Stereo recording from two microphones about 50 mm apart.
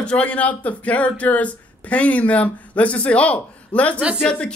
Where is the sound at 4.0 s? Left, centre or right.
Centre.